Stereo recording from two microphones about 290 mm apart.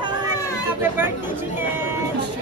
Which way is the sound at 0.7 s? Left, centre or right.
Centre.